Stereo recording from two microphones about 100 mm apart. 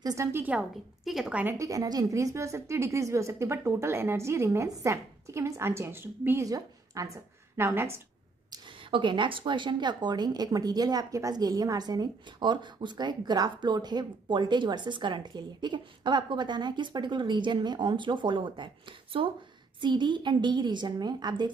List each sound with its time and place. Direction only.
0.0 s a woman's voice: 30° right (ahead or behind)
0.5 s a woman's voice: 5° right (ahead or behind)
1.4 s a woman's voice: 30° right (ahead or behind)
6.4 s a woman's voice: 35° right (ahead or behind)
7.5 s a woman's voice: 25° right (ahead or behind)
8.9 s a woman's voice: 55° right (ahead or behind)
19.1 s speech: 65° right (ahead or behind)
19.8 s a woman's voice: 50° right (ahead or behind)